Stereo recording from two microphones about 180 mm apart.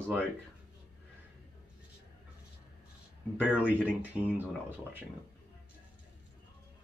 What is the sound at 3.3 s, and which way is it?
Speech, 10° right (ahead or behind).